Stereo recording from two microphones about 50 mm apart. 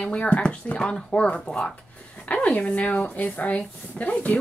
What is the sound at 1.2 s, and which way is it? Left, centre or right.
Speech, left.